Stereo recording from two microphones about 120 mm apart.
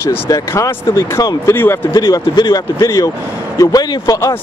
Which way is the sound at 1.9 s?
35° left (ahead or behind).